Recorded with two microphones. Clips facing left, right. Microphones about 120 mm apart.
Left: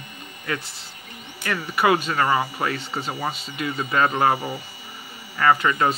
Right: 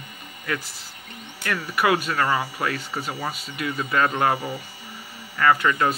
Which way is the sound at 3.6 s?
10° left (ahead or behind).